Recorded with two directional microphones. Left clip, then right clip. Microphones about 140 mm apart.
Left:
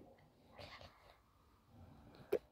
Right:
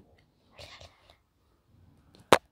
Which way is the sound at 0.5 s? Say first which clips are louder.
Right 7 dB; 35° right (ahead or behind).